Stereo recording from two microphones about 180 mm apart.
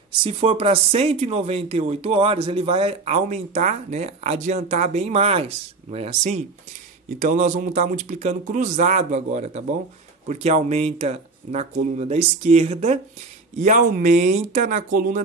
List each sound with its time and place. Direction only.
0.2 s speech: 30° right (ahead or behind); by 15.2 s 50° right (ahead or behind)